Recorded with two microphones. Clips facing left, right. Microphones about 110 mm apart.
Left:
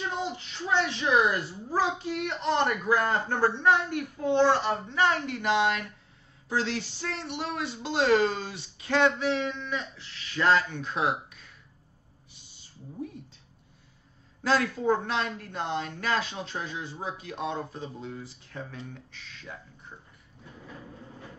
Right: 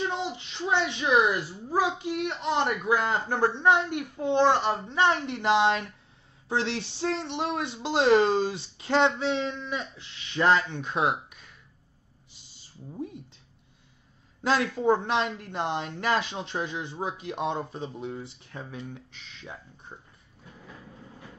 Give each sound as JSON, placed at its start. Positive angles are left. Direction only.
{"t": 0.1, "sound": "a child's voice", "side_deg": -20}
{"t": 14.4, "sound": "speech", "side_deg": -20}